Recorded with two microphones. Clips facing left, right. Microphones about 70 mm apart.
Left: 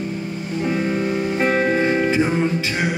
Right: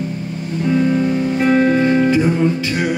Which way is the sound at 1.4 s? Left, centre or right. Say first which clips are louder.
Right 5 dB; left.